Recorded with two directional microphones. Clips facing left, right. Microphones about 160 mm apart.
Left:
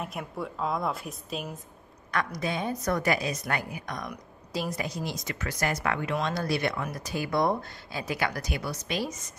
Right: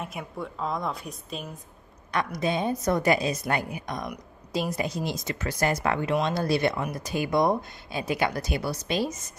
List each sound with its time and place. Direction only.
0.0 s a woman's voice: centre (ahead or behind)
2.0 s speech: 20° right (ahead or behind)